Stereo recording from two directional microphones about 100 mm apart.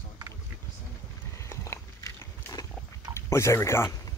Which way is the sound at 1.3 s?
30° left (ahead or behind).